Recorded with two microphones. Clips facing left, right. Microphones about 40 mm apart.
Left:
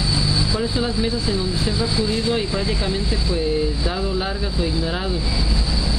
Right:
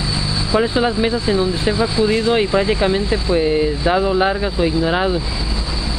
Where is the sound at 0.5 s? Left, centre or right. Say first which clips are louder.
Right 6 dB; right.